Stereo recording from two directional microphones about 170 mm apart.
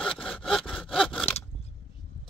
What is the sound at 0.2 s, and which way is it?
Sawing, 5° left (ahead or behind).